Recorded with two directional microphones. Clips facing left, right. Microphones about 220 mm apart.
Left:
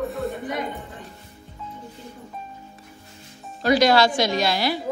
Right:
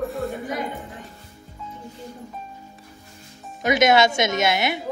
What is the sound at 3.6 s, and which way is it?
Music, 20° right (ahead or behind).